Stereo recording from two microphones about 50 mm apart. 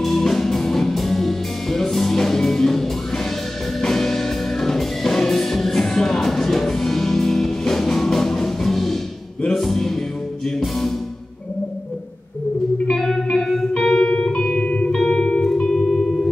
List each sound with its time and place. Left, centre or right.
0.0 s music: centre
12.8 s music: centre; by 15.0 s left
15.0 s music: centre